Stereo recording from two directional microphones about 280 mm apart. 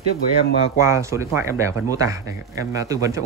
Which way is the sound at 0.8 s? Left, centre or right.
Centre.